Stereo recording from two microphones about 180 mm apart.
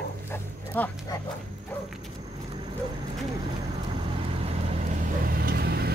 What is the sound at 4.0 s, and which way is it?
Vehicle, 35° right (ahead or behind).